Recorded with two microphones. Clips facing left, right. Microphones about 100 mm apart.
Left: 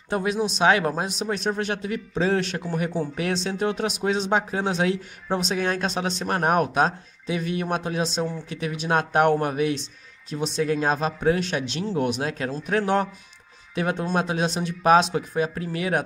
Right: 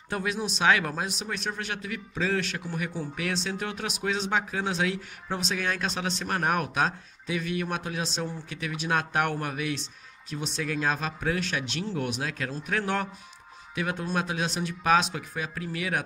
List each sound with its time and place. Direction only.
0.1 s speech: 25° left (ahead or behind)
5.9 s speech: 20° left (ahead or behind)
6.2 s speech: 30° left (ahead or behind)